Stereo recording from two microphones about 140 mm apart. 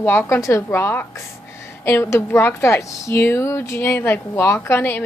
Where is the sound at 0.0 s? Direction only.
15° left (ahead or behind).